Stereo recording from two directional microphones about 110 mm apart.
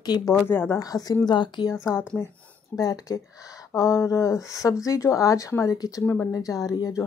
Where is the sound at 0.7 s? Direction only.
35° left (ahead or behind).